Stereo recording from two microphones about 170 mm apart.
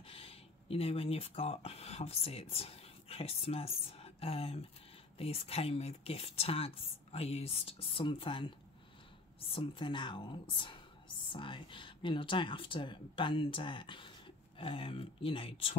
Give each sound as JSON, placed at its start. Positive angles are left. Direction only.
{"t": 0.0, "sound": "a woman's voice", "side_deg": 35}